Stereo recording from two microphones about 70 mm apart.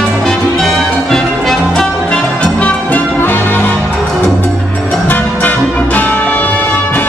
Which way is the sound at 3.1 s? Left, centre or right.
Left.